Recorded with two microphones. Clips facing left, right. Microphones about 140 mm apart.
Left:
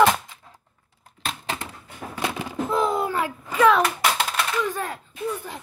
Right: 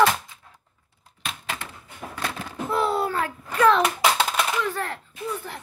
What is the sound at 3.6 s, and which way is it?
Speech, centre (ahead or behind).